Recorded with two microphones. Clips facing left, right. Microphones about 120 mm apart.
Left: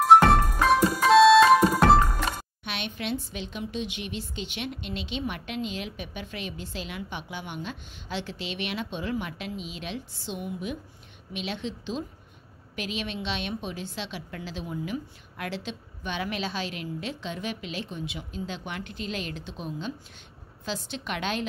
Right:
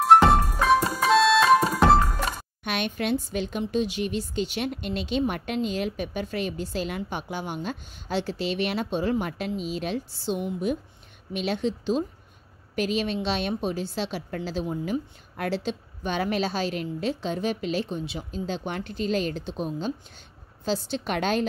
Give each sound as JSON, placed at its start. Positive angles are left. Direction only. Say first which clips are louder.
{"t": 0.0, "sound": "music", "louder": "even", "side_deg": 0}
{"t": 2.6, "sound": "a woman's voice", "louder": "right 7 dB", "side_deg": -45}